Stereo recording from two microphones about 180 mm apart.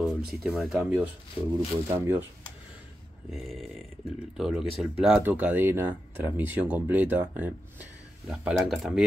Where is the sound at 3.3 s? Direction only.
Centre (ahead or behind).